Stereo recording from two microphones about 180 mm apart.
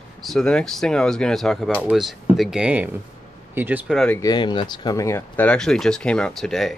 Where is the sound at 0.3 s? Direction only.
5° left (ahead or behind).